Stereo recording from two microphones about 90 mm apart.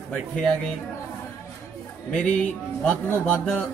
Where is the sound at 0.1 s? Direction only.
10° left (ahead or behind).